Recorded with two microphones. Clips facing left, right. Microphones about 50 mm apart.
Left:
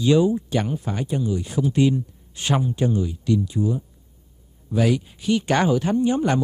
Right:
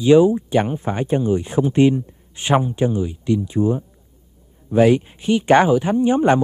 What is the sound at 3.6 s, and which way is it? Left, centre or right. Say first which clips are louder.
Speech: right 5 dB; right.